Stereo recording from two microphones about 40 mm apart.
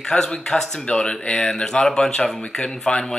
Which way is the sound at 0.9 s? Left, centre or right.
Left.